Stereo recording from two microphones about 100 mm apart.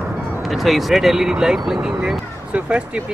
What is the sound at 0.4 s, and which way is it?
Speech, centre (ahead or behind).